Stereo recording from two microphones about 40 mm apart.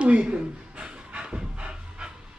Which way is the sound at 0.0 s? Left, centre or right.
Right.